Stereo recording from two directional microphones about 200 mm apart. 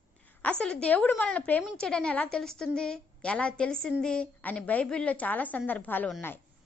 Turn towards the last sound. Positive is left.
turn(degrees=10)  # may be behind; listen again after turning